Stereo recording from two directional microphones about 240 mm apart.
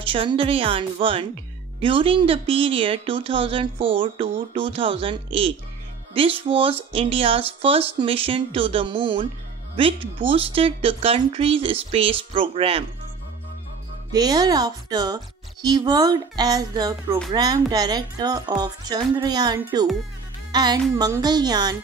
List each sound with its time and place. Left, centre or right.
0.0 s speech: right
14.1 s speech: centre